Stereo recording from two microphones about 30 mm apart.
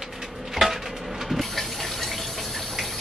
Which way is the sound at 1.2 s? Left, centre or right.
Centre.